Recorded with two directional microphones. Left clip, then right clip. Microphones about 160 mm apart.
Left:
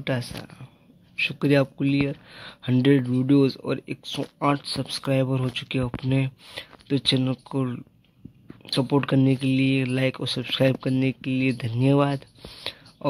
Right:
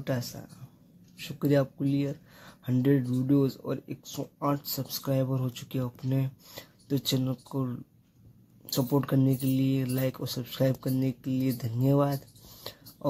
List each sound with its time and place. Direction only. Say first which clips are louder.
0.0 s speech: left 5 dB; 15° left (ahead or behind)